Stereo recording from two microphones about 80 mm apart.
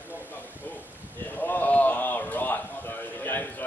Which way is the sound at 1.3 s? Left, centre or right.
Left.